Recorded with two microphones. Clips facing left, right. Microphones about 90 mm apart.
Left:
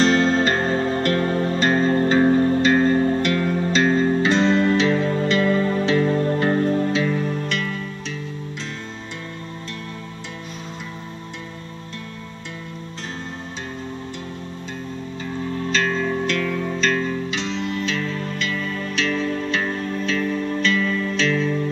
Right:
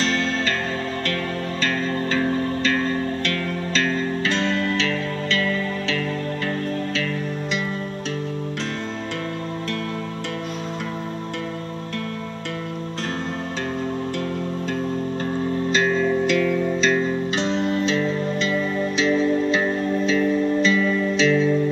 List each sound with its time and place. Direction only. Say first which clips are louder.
0.0 s music: left 6 dB; 25° left (ahead or behind)
6.7 s music: left 5 dB; 20° left (ahead or behind)
15.9 s music: right 3 dB; centre (ahead or behind)
17.3 s music: right 4 dB; 40° right (ahead or behind)
17.7 s music: right 4 dB; 25° right (ahead or behind); by 21.5 s 10° right (ahead or behind)